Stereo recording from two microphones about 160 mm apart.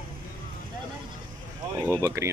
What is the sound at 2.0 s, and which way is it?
Speech, 20° right (ahead or behind).